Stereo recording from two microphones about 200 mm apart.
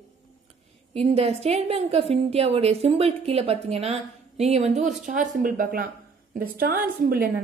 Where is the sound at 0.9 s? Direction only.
30° right (ahead or behind).